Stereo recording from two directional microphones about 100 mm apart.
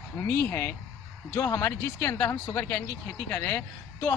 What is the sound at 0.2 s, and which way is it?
Speech, 25° left (ahead or behind).